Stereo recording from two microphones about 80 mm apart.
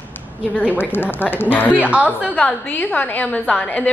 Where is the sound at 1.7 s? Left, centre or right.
Centre.